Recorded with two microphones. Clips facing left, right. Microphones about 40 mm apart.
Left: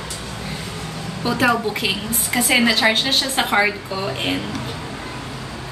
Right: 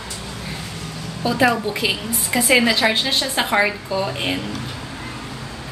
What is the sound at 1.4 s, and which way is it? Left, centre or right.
A woman's voice, centre.